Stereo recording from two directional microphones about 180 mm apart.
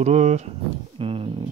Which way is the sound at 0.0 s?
40° right (ahead or behind).